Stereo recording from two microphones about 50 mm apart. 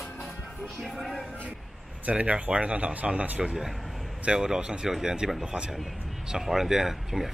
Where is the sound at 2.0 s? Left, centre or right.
Right.